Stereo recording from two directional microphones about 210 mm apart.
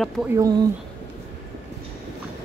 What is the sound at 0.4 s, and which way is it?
Speech, 20° right (ahead or behind).